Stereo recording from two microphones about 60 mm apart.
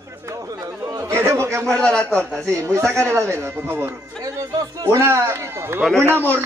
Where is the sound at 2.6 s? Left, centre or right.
Right.